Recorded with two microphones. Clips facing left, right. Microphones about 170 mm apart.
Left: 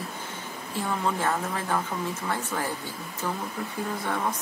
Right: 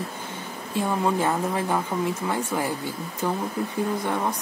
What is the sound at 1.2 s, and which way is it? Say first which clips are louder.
Speech: right 4 dB; 15° right (ahead or behind).